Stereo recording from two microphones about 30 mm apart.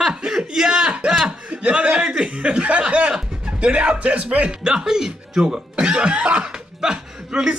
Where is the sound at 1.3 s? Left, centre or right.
Right.